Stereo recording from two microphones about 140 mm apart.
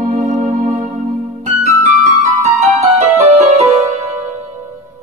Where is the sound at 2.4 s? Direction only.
55° right (ahead or behind).